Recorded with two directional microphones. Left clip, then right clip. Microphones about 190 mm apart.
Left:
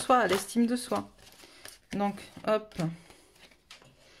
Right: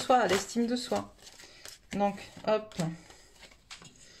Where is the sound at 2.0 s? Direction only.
35° left (ahead or behind).